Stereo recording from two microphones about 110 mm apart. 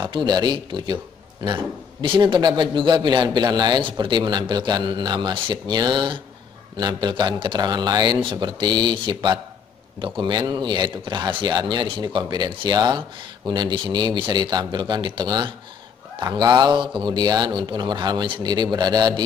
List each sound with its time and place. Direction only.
0.0 s a man's voice: 45° right (ahead or behind)